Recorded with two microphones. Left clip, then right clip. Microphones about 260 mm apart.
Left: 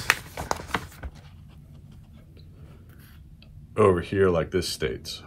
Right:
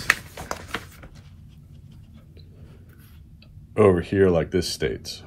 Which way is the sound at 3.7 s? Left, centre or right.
Centre.